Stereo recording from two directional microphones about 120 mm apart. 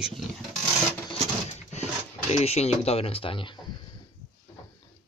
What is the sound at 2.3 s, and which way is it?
Speech, 60° left (ahead or behind).